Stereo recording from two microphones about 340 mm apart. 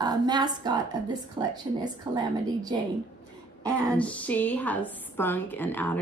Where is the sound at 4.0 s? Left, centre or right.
Centre.